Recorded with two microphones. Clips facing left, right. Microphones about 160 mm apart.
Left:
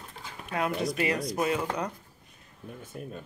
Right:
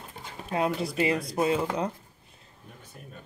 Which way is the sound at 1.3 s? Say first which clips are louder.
Right 3 dB; 25° right (ahead or behind).